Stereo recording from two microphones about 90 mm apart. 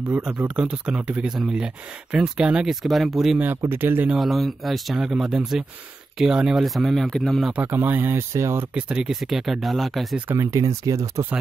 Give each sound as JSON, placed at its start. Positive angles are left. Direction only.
{"t": 0.1, "sound": "speech", "side_deg": -15}
{"t": 3.3, "sound": "speech", "side_deg": -25}
{"t": 4.1, "sound": "speech", "side_deg": 0}
{"t": 7.5, "sound": "speech", "side_deg": -20}
{"t": 8.7, "sound": "speech", "side_deg": -10}
{"t": 10.3, "sound": "speech", "side_deg": -35}